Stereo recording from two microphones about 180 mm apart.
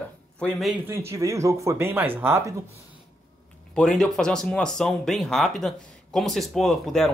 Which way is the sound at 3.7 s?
5° left (ahead or behind).